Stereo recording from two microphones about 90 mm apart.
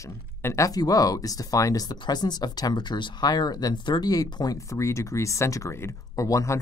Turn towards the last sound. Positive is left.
turn(degrees=35)  # may be behind; listen again after turning